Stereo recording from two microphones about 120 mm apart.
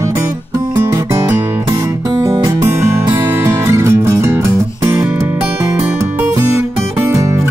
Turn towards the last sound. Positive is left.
turn(degrees=-25)  # may be behind; listen again after turning